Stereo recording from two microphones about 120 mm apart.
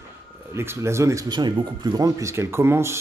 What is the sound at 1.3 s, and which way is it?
Speech, 40° right (ahead or behind).